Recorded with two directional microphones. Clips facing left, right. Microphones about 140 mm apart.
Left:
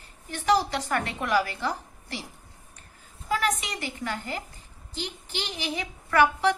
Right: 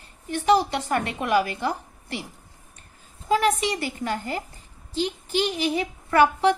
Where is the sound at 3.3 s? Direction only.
30° right (ahead or behind).